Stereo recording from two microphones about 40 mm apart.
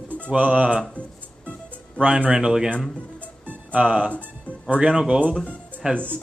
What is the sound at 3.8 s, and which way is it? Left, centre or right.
Speech, right.